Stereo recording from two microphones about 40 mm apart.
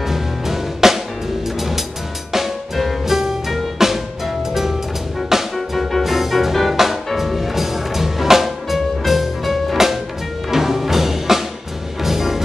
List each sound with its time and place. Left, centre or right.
0.0 s music: centre
2.3 s drum kit: centre
5.3 s music: centre
5.8 s music: centre